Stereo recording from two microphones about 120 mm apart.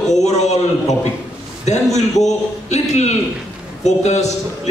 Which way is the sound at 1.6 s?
70° left (ahead or behind).